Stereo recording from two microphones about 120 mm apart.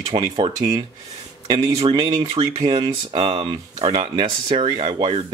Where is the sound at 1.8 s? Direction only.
45° right (ahead or behind).